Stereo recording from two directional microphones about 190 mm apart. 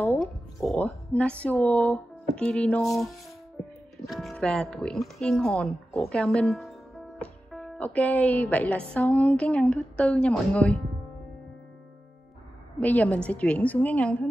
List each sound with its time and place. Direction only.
0.2 s speech: centre (ahead or behind)
4.1 s speech: centre (ahead or behind)
12.8 s speech: 10° left (ahead or behind)